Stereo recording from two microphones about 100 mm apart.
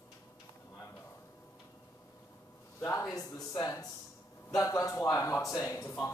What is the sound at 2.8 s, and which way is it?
Speech, 30° left (ahead or behind).